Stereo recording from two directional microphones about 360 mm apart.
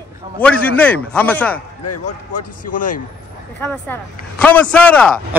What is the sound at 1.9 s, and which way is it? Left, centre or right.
Speech, left.